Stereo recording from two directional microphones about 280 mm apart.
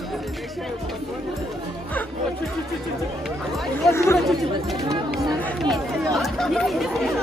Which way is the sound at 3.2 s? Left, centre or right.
Centre.